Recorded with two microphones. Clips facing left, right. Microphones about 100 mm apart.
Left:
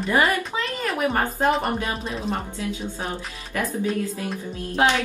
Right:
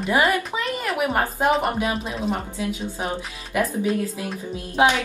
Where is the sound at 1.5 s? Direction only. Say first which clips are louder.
Right 2 dB; 5° right (ahead or behind).